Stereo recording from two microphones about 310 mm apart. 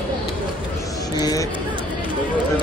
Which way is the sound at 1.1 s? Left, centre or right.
Centre.